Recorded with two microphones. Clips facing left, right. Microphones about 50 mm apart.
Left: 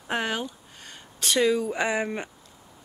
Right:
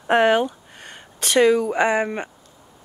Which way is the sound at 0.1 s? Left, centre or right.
Right.